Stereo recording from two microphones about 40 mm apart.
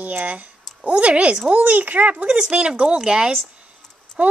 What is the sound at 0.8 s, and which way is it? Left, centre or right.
A woman's voice, right.